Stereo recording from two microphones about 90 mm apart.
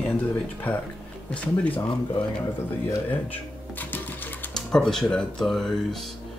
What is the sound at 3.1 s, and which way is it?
Cash register, 20° left (ahead or behind).